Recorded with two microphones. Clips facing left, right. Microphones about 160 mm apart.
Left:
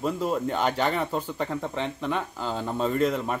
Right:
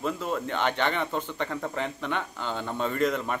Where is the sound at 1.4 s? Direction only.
Centre (ahead or behind).